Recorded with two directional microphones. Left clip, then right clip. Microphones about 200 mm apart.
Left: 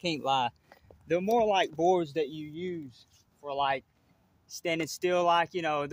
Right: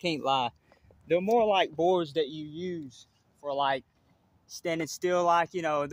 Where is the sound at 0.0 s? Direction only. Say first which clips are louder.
Right 1 dB; 15° left (ahead or behind).